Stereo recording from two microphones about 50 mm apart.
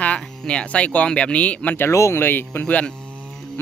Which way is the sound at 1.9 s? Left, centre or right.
Left.